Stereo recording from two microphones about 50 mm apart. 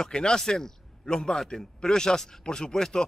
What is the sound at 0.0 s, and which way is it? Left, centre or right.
A man's voice, centre.